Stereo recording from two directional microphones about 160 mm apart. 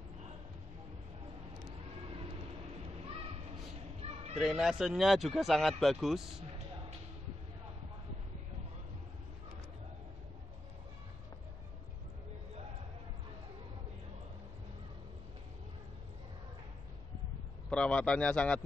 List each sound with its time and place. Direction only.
4.0 s children playing: 40° right (ahead or behind)
4.4 s speech: 5° right (ahead or behind)
17.6 s speech: 5° left (ahead or behind)